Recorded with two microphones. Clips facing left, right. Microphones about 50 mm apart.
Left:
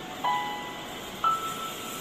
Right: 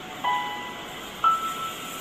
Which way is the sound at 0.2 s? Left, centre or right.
Right.